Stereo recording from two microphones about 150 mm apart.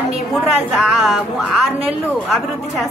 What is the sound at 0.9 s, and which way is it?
Speech, centre (ahead or behind).